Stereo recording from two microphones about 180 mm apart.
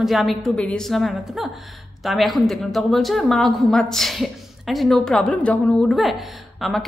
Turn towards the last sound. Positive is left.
turn(degrees=0)  # may be behind; listen again after turning